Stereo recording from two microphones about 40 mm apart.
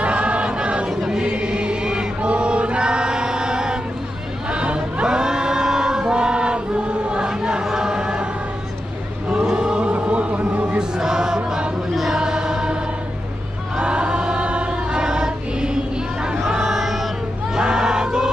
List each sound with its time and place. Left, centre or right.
0.0 s choir: right
0.8 s choir: centre
1.2 s choir: right
9.3 s a sound: right
10.8 s choir: centre
12.2 s choir: centre
13.7 s choir: right
16.6 s choir: centre
17.6 s battle cry: centre